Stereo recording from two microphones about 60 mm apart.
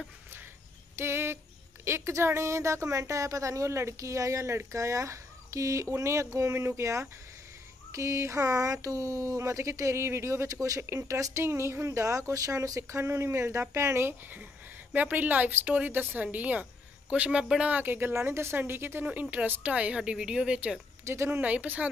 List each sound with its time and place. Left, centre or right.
0.9 s a sound: right
1.9 s speech: right
10.5 s speech: right
10.8 s speech: right
11.3 s speech: right
12.9 s speech: right
15.0 s speech: right
17.6 s speech: right
19.3 s speech: right
21.0 s speech: right
21.3 s speech: right